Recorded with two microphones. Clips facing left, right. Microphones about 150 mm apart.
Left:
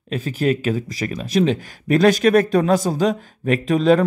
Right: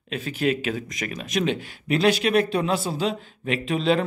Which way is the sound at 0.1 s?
35° left (ahead or behind).